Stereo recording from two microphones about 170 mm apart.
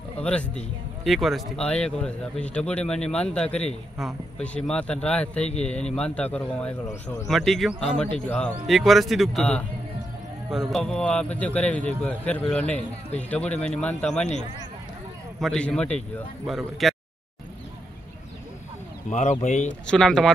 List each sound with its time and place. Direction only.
0.2 s a man's voice: 5° left (ahead or behind)
7.2 s a man's voice: centre (ahead or behind)
15.4 s speech: 5° left (ahead or behind)
19.0 s speech: 45° left (ahead or behind)
19.9 s speech: 5° left (ahead or behind)